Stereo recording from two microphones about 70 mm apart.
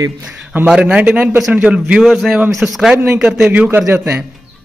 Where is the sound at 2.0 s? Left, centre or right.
Centre.